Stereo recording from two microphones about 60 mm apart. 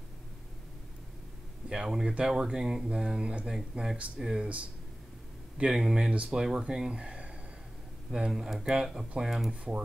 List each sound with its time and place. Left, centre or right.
1.7 s speech: centre
5.7 s speech: centre
6.1 s speech: centre